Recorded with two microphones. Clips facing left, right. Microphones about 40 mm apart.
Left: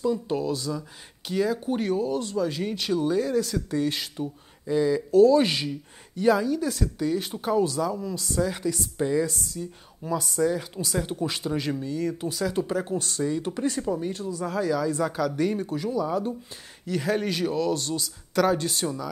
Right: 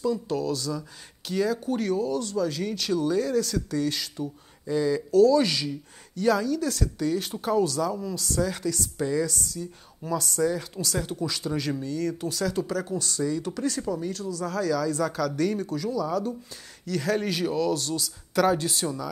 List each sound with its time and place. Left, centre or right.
0.0 s speech: left
5.2 s speech: left
10.0 s speech: centre
11.7 s speech: centre
12.6 s speech: left
13.2 s speech: left
15.7 s speech: left
16.8 s speech: centre